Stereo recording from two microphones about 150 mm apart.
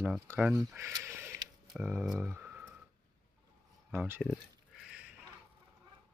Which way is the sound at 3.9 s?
10° right (ahead or behind).